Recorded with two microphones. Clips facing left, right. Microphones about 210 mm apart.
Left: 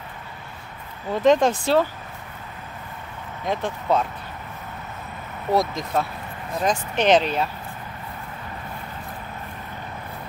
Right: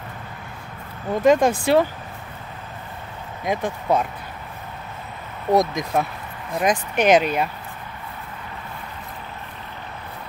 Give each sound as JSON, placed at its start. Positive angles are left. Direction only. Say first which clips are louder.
{"t": 1.2, "sound": "speech", "louder": "right 1 dB", "side_deg": -10}
{"t": 3.4, "sound": "speech", "louder": "right 1 dB", "side_deg": -10}
{"t": 5.5, "sound": "speech", "louder": "right 3 dB", "side_deg": -15}